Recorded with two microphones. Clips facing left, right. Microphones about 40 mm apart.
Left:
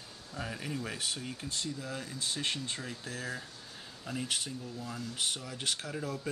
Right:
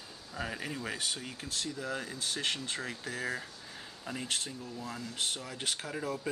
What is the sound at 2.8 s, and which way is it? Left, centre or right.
Speech, centre.